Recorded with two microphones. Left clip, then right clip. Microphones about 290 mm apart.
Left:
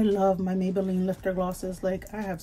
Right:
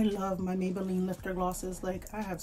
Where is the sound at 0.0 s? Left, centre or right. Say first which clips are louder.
Left 9 dB; centre.